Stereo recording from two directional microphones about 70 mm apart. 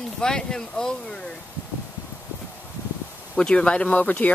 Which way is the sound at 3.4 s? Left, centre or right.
Centre.